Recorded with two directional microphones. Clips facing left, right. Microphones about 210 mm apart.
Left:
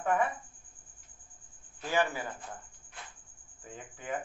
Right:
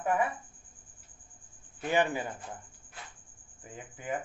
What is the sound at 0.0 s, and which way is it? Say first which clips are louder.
Speech: even; 10° right (ahead or behind).